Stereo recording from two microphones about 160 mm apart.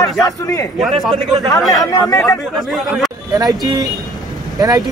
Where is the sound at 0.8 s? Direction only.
Centre (ahead or behind).